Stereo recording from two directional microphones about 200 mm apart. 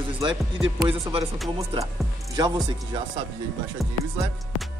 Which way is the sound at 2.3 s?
20° right (ahead or behind).